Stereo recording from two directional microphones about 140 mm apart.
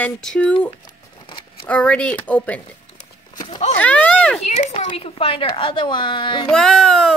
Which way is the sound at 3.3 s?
30° left (ahead or behind).